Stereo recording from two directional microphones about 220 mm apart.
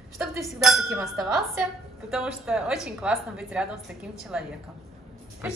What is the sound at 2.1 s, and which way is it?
A woman's voice, 5° right (ahead or behind).